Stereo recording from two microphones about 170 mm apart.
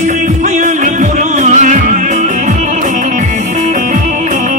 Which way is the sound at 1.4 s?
45° right (ahead or behind).